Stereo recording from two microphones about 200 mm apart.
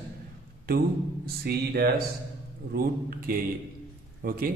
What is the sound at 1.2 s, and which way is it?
A man's voice, 50° right (ahead or behind).